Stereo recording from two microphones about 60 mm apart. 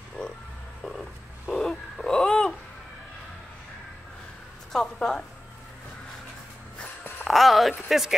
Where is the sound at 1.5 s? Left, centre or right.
Centre.